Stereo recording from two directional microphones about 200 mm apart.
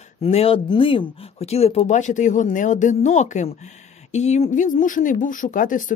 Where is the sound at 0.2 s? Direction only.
30° left (ahead or behind).